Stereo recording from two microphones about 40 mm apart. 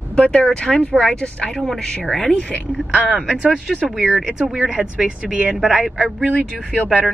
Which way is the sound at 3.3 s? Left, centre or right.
Right.